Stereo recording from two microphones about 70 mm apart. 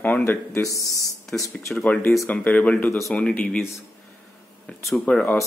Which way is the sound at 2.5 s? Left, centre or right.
Left.